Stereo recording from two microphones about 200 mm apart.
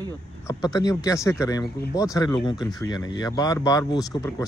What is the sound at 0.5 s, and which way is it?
Speech, 20° left (ahead or behind).